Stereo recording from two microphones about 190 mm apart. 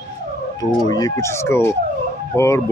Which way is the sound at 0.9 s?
20° left (ahead or behind).